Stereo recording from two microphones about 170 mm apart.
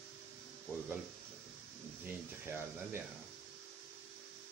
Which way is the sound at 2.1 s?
10° right (ahead or behind).